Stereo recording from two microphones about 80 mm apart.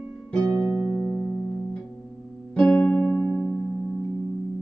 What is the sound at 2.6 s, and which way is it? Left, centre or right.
Music, centre.